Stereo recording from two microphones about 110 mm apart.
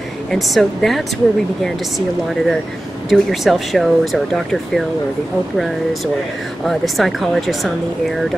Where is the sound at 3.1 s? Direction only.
Centre (ahead or behind).